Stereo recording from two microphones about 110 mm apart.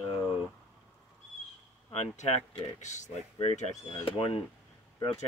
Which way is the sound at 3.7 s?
35° left (ahead or behind).